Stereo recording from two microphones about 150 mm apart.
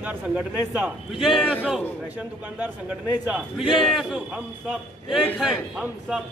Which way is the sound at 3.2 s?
5° right (ahead or behind).